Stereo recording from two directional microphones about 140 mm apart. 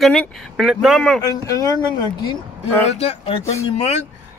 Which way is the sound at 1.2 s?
25° left (ahead or behind).